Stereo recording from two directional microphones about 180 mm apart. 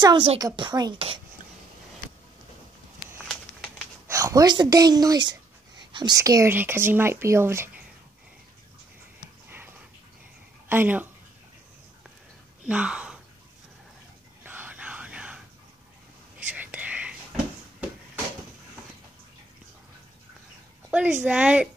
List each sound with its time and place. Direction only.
0.0 s a woman's voice: 25° right (ahead or behind)
4.1 s speech: 20° right (ahead or behind)
9.5 s dog: 10° right (ahead or behind)
10.7 s speech: 10° right (ahead or behind)
12.6 s speech: 5° right (ahead or behind)
14.4 s whispering: 10° right (ahead or behind)
20.9 s a woman's voice: 5° right (ahead or behind)